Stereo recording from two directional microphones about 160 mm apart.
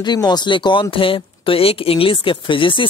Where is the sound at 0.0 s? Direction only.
25° left (ahead or behind).